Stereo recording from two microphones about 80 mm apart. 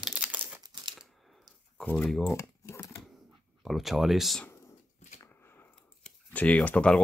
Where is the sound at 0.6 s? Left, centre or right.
Right.